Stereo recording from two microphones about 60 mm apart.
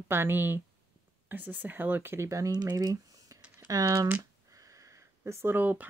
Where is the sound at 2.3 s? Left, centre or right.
Right.